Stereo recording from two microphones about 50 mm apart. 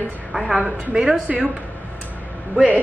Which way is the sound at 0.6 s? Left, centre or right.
Centre.